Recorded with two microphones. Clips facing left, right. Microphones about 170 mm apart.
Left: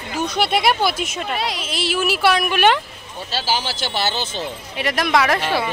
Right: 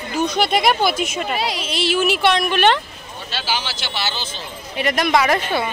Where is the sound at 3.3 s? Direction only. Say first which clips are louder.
Left 2 dB; 40° left (ahead or behind).